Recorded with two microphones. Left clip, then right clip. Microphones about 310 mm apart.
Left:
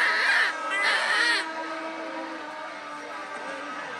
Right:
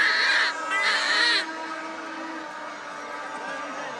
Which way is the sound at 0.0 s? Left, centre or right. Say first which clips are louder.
Right 1 dB; centre.